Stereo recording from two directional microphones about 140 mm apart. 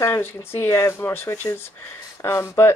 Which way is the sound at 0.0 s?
15° left (ahead or behind).